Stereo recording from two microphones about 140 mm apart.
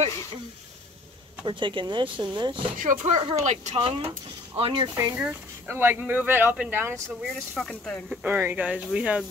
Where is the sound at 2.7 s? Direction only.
65° right (ahead or behind).